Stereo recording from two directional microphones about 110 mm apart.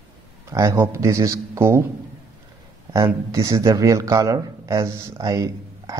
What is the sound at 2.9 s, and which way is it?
Speech, 30° right (ahead or behind).